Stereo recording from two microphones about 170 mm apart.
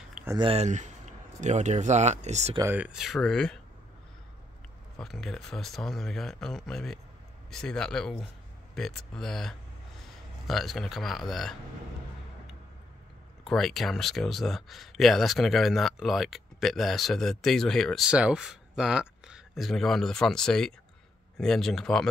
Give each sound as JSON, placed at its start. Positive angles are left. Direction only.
{"t": 0.1, "sound": "a sound", "side_deg": -15}
{"t": 0.4, "sound": "speech", "side_deg": -35}
{"t": 0.7, "sound": "speech", "side_deg": -45}
{"t": 2.7, "sound": "speech", "side_deg": -5}
{"t": 4.9, "sound": "speech", "side_deg": 0}
{"t": 13.4, "sound": "speech", "side_deg": 0}